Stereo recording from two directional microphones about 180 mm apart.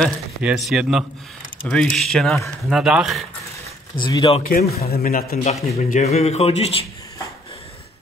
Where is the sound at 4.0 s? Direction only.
25° left (ahead or behind).